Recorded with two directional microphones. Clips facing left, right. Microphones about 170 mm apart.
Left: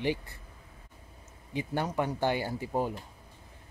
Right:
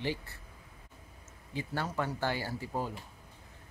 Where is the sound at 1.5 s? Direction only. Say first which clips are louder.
Left 4 dB; 20° left (ahead or behind).